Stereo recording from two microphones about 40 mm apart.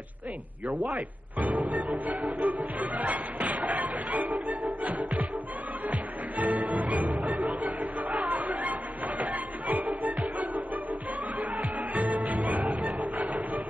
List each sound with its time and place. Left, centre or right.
0.9 s speech: right
2.0 s music: right
7.6 s chatter: right
11.3 s music: right